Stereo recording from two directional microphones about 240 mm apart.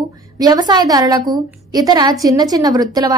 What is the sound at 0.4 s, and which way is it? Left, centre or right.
A woman's voice, centre.